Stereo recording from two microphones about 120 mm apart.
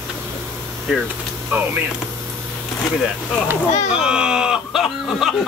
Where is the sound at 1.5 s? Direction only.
15° right (ahead or behind).